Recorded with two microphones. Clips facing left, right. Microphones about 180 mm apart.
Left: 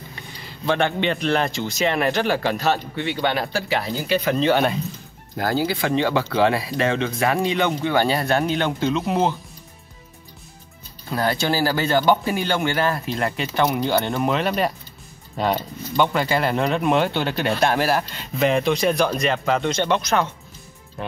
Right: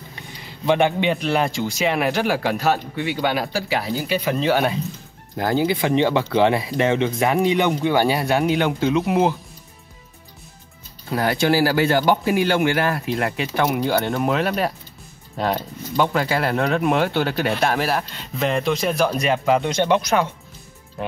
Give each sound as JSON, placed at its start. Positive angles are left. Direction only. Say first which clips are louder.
{"t": 0.7, "sound": "speech", "louder": "right 3 dB", "side_deg": -10}
{"t": 5.4, "sound": "speech", "louder": "right 2 dB", "side_deg": -20}
{"t": 11.1, "sound": "speech", "louder": "right 3 dB", "side_deg": -15}